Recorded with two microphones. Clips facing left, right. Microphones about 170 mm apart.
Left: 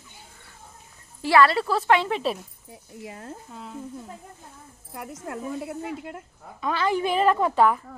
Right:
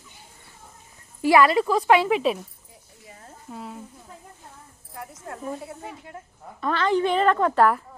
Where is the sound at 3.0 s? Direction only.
75° left (ahead or behind).